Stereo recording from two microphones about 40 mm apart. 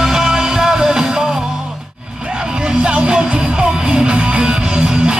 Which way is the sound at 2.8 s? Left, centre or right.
Right.